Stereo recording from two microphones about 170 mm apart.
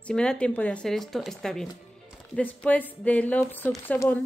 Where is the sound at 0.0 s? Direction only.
5° left (ahead or behind).